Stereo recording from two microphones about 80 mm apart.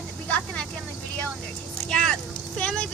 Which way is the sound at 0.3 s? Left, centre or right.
Centre.